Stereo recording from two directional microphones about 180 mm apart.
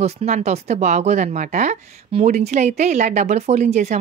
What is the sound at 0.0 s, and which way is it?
Speech, 35° right (ahead or behind).